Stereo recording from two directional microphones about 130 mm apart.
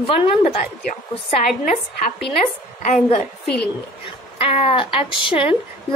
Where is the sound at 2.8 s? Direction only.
60° left (ahead or behind).